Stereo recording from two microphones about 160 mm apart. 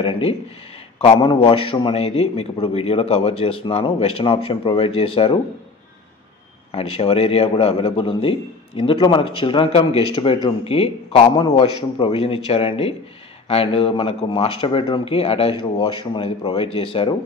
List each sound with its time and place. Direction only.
0.0 s a man's voice: 35° left (ahead or behind)
6.7 s a man's voice: 35° left (ahead or behind)